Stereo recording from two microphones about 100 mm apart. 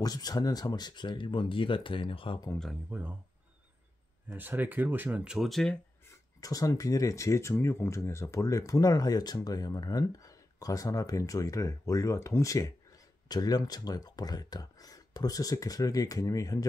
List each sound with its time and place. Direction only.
0.0 s speech: 40° left (ahead or behind); by 2.4 s 60° left (ahead or behind)
2.9 s speech: 15° right (ahead or behind)
4.3 s speech: 20° right (ahead or behind); by 5.8 s 5° left (ahead or behind)
6.0 s speech: 35° left (ahead or behind)